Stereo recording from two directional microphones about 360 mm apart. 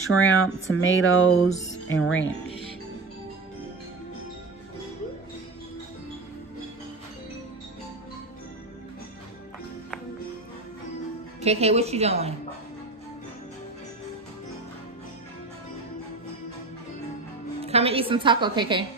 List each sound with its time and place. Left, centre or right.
0.1 s speech: left
11.4 s a woman's voice: centre
17.6 s a woman's voice: centre